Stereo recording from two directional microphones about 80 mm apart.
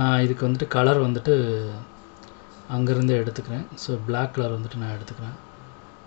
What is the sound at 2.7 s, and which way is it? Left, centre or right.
Speech, centre.